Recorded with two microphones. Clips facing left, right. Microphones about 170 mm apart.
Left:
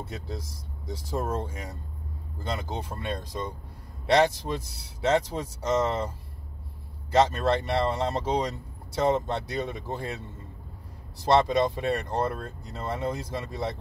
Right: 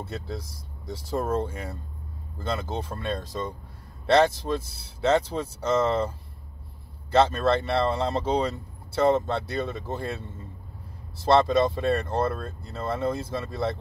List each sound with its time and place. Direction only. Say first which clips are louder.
0.8 s speech: right 3 dB; 10° left (ahead or behind)
11.1 s speech: right 2 dB; 15° left (ahead or behind)